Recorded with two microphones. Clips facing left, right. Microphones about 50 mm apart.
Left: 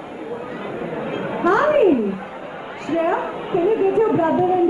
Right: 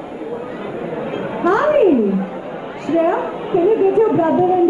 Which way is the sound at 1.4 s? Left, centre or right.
Centre.